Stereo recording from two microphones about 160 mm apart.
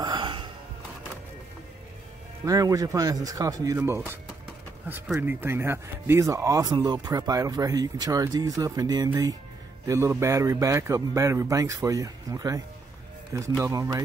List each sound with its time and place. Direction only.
0.0 s music: 30° right (ahead or behind)
2.4 s speech: 20° right (ahead or behind)